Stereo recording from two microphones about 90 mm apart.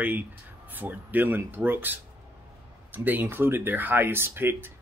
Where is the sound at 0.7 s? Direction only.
20° right (ahead or behind).